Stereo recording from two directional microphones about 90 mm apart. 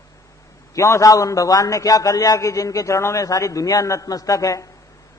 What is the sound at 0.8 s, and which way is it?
A man's voice, 40° left (ahead or behind).